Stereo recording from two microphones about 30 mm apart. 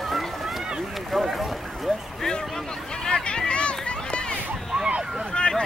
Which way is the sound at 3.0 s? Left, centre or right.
Left.